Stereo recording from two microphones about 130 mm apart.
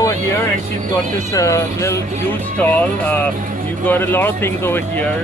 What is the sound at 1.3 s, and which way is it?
Speech, 25° left (ahead or behind).